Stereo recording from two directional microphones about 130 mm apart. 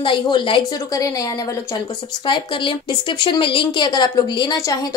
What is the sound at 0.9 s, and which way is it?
Speech, 25° left (ahead or behind).